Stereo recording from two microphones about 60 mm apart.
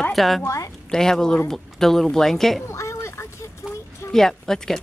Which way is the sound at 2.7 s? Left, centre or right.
Left.